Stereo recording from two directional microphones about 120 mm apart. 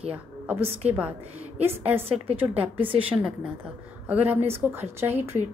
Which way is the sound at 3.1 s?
10° right (ahead or behind).